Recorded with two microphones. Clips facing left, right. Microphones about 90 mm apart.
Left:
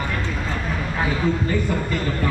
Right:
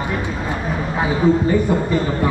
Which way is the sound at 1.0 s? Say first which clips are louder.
Right 7 dB; 10° right (ahead or behind).